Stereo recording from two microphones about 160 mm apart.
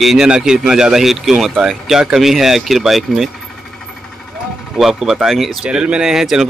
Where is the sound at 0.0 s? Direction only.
5° right (ahead or behind).